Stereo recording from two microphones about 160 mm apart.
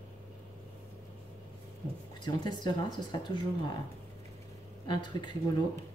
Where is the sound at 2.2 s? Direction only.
25° left (ahead or behind).